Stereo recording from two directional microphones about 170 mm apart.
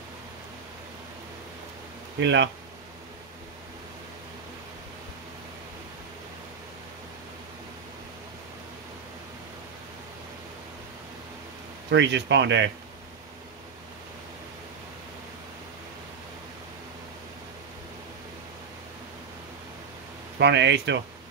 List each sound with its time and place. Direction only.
2.1 s speech: 90° right
11.9 s speech: 90° right
20.3 s speech: 90° right